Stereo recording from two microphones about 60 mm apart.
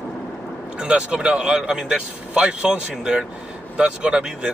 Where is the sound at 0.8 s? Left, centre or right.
Centre.